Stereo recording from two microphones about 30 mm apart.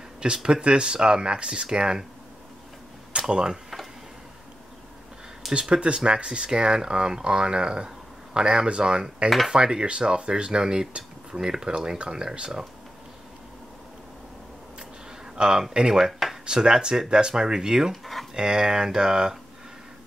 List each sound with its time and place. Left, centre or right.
0.2 s speech: right
3.3 s speech: right
5.5 s speech: right
15.3 s speech: right
16.1 s a sound: centre
16.4 s speech: right